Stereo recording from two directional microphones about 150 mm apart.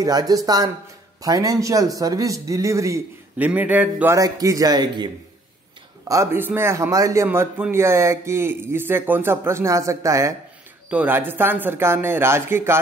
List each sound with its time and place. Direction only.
0.0 s speech: 25° right (ahead or behind)
3.3 s speech: 10° right (ahead or behind)
4.2 s speech: 25° right (ahead or behind)
6.0 s speech: 20° right (ahead or behind)